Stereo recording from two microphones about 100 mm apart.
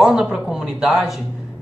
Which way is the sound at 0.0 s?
5° right (ahead or behind).